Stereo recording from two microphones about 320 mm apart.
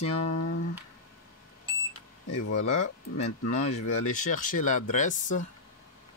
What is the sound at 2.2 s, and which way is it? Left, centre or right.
Speech, left.